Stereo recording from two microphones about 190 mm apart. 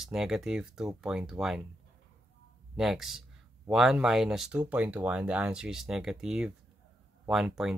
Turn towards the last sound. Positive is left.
turn(degrees=-5)  # may be behind; listen again after turning